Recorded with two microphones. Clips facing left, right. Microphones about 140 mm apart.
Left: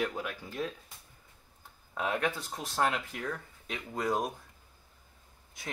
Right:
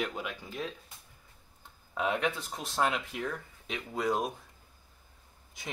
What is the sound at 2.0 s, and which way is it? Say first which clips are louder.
Speech: right 1 dB; centre (ahead or behind).